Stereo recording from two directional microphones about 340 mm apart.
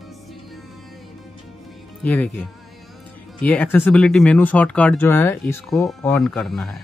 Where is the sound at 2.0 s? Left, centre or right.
Centre.